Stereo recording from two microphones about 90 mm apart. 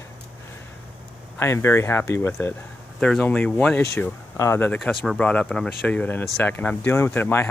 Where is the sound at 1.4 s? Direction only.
30° left (ahead or behind).